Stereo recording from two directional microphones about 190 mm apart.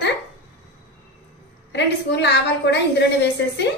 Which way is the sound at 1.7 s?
65° left (ahead or behind).